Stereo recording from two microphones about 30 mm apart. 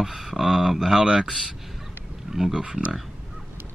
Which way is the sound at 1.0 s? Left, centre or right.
Right.